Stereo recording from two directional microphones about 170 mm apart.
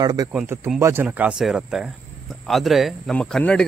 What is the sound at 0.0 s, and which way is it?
A man's voice, 25° right (ahead or behind).